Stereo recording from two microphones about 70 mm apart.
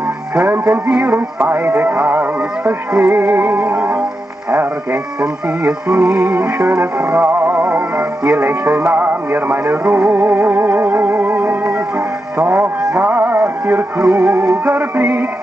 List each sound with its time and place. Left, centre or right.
0.4 s music: centre
1.5 s music: right
5.2 s music: centre
6.2 s music: right